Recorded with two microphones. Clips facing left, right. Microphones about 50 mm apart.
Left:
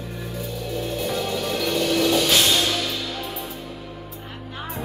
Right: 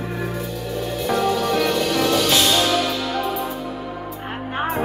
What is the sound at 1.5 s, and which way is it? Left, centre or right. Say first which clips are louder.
Music: right 3 dB; right.